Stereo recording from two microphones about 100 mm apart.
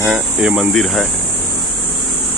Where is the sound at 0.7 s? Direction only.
5° left (ahead or behind).